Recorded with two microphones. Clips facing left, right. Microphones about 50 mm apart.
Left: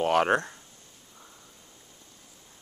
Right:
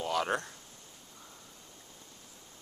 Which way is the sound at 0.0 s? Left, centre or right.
Left.